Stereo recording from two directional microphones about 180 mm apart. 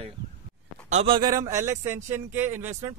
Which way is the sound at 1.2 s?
20° right (ahead or behind).